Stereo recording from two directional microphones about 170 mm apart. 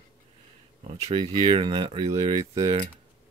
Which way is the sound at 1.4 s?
30° right (ahead or behind).